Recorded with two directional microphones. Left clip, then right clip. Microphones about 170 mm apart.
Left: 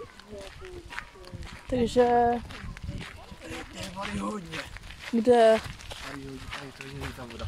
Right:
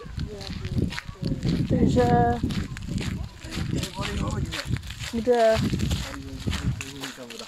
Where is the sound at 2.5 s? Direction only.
70° right (ahead or behind).